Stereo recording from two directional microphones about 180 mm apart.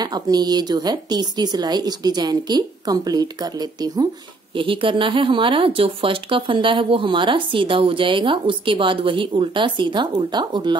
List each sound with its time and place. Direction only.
0.0 s speech: 20° right (ahead or behind)